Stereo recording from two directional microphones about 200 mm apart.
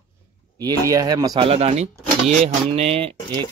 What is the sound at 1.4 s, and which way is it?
Speech, 30° right (ahead or behind).